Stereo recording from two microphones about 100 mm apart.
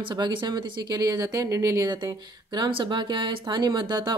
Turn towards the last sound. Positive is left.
turn(degrees=-45)  # may be behind; listen again after turning